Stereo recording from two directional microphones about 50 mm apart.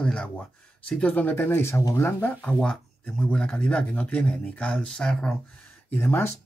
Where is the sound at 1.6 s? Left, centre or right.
Left.